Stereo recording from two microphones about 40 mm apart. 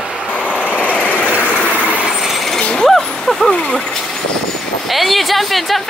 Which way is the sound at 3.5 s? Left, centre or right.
Left.